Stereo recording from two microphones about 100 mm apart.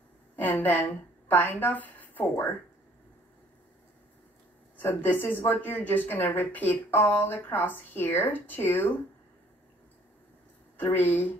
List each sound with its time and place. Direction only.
0.4 s a woman's voice: 20° left (ahead or behind)
4.7 s speech: 20° left (ahead or behind)
10.8 s speech: 20° left (ahead or behind)